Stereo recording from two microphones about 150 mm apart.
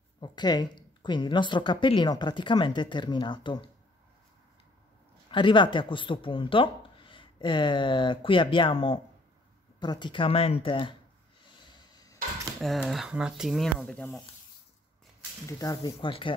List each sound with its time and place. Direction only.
0.2 s speech: 30° left (ahead or behind)
5.3 s speech: 35° left (ahead or behind)
11.7 s hammer: 25° left (ahead or behind)
12.5 s speech: centre (ahead or behind)
15.4 s speech: 25° left (ahead or behind)